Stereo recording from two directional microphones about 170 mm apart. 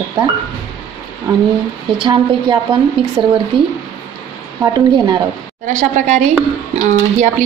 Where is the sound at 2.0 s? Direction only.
25° right (ahead or behind).